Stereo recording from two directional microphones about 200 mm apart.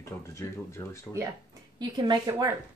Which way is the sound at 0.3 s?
15° left (ahead or behind).